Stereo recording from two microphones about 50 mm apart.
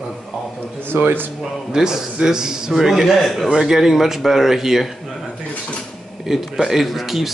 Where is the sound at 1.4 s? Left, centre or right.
Centre.